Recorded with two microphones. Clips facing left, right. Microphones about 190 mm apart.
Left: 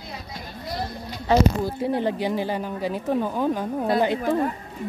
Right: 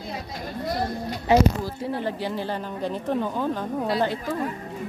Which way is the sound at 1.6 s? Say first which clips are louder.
Left 4 dB; 20° left (ahead or behind).